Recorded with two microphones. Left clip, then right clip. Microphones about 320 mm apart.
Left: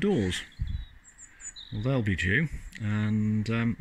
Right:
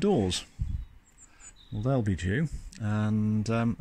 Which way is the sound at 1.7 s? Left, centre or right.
Centre.